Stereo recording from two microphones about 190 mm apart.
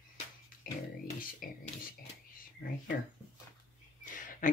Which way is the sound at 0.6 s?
50° left (ahead or behind).